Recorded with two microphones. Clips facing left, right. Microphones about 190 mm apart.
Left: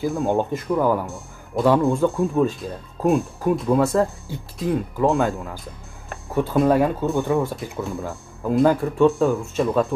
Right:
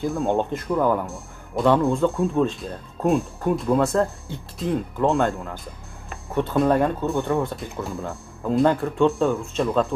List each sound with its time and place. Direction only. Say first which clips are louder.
0.0 s speech: left 1 dB; centre (ahead or behind)